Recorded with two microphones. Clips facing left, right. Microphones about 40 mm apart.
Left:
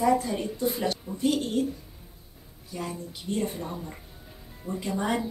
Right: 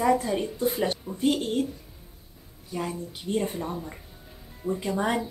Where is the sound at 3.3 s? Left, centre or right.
Centre.